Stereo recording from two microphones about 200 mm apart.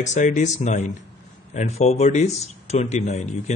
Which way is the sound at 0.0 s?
35° left (ahead or behind).